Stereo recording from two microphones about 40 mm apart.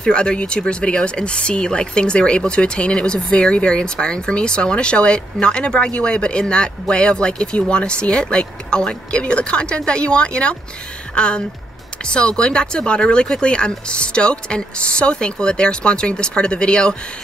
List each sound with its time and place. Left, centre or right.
0.0 s speech: left